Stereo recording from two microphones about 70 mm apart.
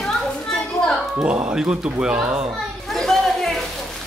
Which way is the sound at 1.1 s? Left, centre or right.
Centre.